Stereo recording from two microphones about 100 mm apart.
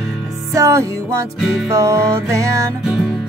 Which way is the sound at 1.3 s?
5° right (ahead or behind).